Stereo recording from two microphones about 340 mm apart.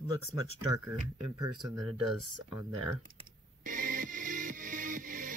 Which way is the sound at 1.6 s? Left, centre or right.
Centre.